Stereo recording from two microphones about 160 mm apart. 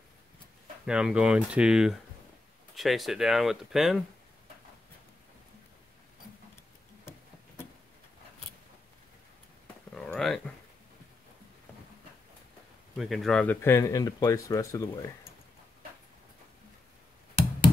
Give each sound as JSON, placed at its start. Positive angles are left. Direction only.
{"t": 0.8, "sound": "speech", "side_deg": -5}
{"t": 9.9, "sound": "a sound", "side_deg": 5}
{"t": 12.9, "sound": "speech", "side_deg": 0}